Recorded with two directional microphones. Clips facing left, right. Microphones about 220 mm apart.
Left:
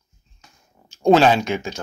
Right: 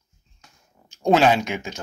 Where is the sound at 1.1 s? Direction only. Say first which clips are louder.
Left 3 dB; 15° right (ahead or behind).